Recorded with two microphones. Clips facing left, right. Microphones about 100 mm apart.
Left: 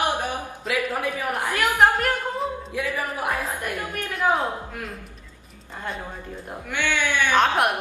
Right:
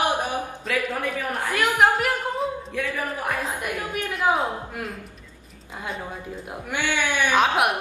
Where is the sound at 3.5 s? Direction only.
15° right (ahead or behind).